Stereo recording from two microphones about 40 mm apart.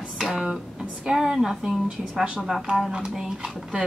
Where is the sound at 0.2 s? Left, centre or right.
Centre.